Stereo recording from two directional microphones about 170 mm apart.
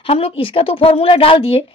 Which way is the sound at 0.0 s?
35° left (ahead or behind).